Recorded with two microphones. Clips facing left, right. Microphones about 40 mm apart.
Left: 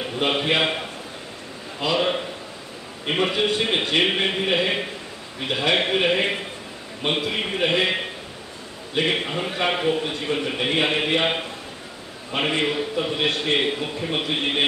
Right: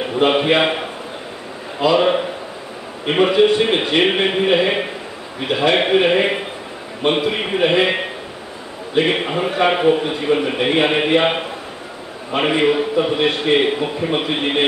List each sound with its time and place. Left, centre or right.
0.0 s a man's voice: centre